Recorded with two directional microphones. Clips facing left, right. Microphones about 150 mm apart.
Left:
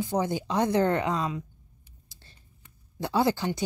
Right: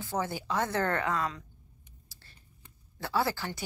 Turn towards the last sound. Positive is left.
turn(degrees=20)  # may be behind; listen again after turning